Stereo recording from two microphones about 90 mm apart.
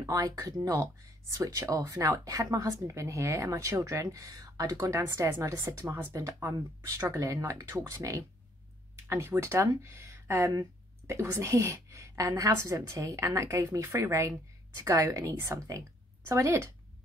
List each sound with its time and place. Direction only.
0.0 s a woman's voice: 45° right (ahead or behind)
9.0 s speech: 25° right (ahead or behind)
11.1 s a woman's voice: 30° right (ahead or behind)